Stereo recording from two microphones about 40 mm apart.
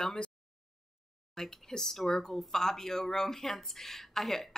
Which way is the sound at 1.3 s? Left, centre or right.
Centre.